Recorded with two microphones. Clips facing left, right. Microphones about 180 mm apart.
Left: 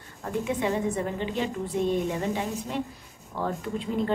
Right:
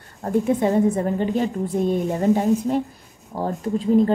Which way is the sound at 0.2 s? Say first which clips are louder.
Right 8 dB; 40° right (ahead or behind).